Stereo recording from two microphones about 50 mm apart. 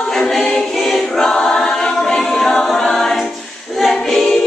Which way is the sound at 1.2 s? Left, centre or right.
Centre.